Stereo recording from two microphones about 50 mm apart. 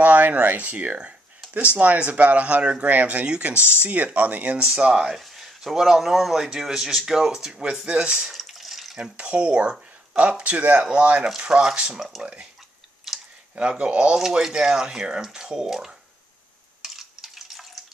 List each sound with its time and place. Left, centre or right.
0.0 s speech: right
4.6 s speech: centre
5.2 s speech: centre
8.3 s a sound: centre
9.1 s speech: right
11.2 s speech: centre
13.1 s typing: centre
13.6 s speech: right
14.1 s speech: centre
16.8 s stir: centre